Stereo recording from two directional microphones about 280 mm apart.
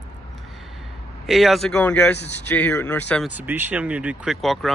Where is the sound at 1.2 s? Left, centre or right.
Centre.